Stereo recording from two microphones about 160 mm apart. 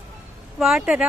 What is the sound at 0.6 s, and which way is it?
Speech, 5° right (ahead or behind).